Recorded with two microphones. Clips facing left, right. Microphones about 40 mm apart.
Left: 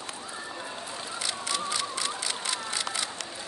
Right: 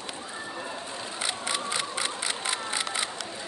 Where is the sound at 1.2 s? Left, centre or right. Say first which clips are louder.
Right 1 dB; right.